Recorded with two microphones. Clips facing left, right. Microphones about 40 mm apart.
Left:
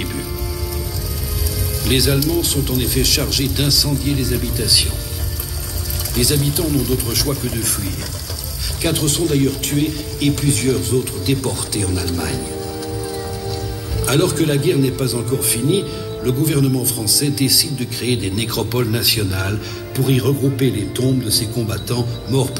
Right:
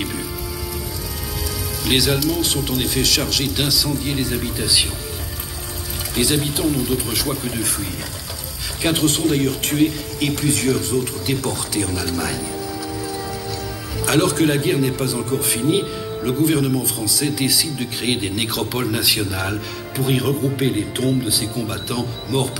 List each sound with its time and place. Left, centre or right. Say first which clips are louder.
1.9 s a man's voice: left 1 dB; centre
4.1 s speech: left 2 dB; right
6.1 s speech: left 1 dB; right
8.8 s speech: right 1 dB; right
14.0 s speech: even; right
15.2 s speech: left 1 dB; right
18.2 s a man's voice: left 1 dB; centre